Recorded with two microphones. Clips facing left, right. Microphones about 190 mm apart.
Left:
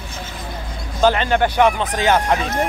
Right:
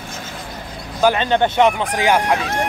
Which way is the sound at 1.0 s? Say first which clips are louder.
Even; 15° right (ahead or behind).